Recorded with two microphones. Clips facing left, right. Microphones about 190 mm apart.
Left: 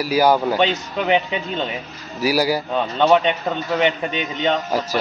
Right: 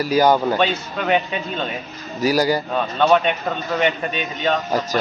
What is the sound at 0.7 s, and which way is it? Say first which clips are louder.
Speech: left 1 dB; 20° left (ahead or behind).